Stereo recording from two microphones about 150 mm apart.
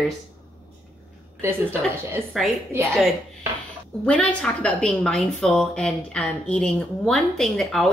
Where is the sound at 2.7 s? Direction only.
20° right (ahead or behind).